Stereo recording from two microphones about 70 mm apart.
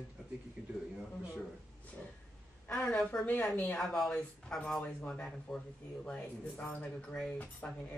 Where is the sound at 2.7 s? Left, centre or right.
Centre.